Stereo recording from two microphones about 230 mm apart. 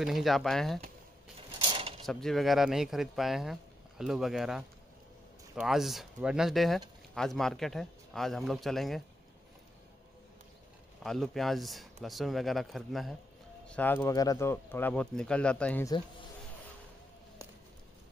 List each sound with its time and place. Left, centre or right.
0.0 s speech: centre
1.6 s a sound: right
2.0 s speech: centre
11.0 s speech: centre